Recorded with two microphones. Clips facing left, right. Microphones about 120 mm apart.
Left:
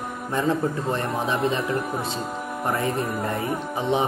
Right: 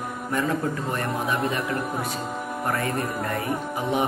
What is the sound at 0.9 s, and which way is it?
Speech, 25° left (ahead or behind).